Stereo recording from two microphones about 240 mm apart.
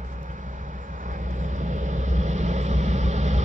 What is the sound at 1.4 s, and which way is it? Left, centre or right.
Vehicle, right.